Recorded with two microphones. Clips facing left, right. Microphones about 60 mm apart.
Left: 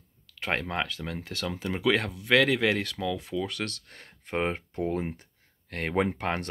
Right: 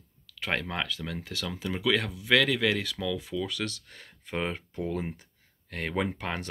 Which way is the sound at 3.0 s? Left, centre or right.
Centre.